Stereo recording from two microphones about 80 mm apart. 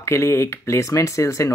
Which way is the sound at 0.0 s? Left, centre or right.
Left.